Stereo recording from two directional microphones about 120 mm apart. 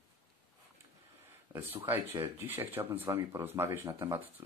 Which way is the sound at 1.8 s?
20° right (ahead or behind).